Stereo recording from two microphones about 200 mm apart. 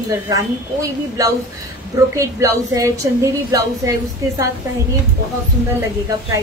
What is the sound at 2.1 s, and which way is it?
A woman's voice, 15° right (ahead or behind).